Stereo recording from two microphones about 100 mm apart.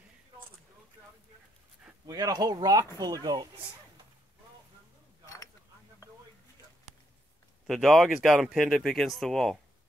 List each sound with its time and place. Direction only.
2.0 s speech: 40° right (ahead or behind)
7.6 s speech: centre (ahead or behind)